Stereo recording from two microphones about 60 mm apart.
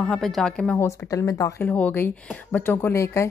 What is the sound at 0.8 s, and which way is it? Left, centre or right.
Speech, left.